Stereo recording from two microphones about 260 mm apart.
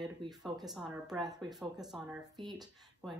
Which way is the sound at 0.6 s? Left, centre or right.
Centre.